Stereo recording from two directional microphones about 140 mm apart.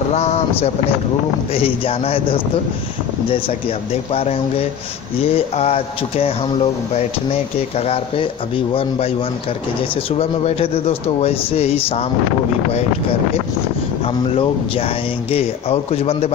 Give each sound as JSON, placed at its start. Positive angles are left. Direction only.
{"t": 0.1, "sound": "speech", "side_deg": 50}
{"t": 14.0, "sound": "speech", "side_deg": 45}